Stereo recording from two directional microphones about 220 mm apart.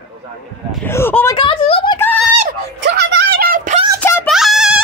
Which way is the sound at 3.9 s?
10° left (ahead or behind).